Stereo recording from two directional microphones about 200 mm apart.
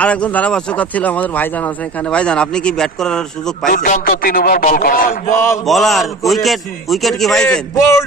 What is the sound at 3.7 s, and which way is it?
A man's voice, 40° left (ahead or behind).